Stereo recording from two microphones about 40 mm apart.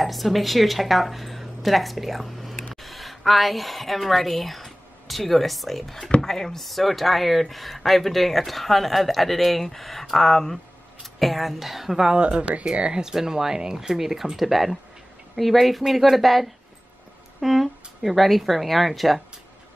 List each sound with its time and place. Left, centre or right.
0.0 s a woman's voice: centre
12.4 s speech: right
13.0 s speech: centre